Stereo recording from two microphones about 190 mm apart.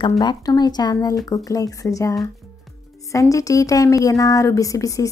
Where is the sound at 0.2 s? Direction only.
20° left (ahead or behind).